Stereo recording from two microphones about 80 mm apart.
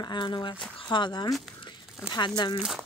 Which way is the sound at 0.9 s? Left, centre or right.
Left.